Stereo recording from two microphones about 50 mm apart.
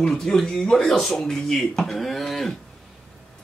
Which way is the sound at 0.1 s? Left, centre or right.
Centre.